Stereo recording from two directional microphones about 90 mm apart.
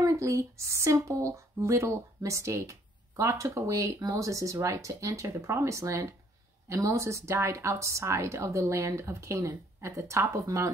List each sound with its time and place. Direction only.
0.0 s speech: 35° right (ahead or behind)